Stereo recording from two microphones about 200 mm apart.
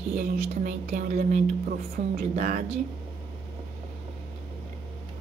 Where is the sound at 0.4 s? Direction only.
35° right (ahead or behind).